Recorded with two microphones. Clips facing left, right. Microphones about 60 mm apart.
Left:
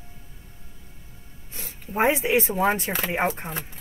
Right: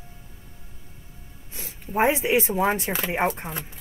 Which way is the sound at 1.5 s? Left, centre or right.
Centre.